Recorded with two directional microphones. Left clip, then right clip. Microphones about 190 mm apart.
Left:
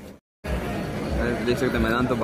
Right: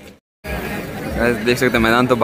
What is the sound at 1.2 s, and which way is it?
Speech, 25° right (ahead or behind).